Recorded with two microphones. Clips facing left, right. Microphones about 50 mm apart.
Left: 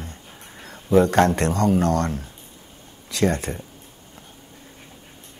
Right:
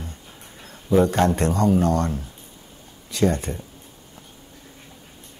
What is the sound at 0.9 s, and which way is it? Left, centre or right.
Speech, left.